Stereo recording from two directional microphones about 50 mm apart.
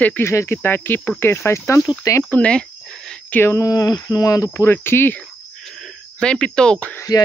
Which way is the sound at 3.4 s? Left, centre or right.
Left.